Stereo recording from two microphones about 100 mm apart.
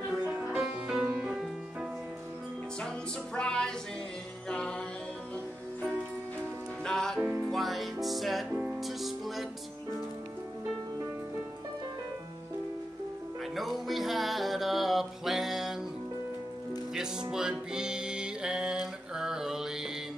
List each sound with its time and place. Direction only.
0.5 s music: 10° right (ahead or behind)
3.3 s music: 5° left (ahead or behind)
6.8 s music: 5° left (ahead or behind)
7.2 s music: 20° right (ahead or behind)
7.5 s music: centre (ahead or behind)
13.6 s music: centre (ahead or behind)
16.9 s music: 5° right (ahead or behind)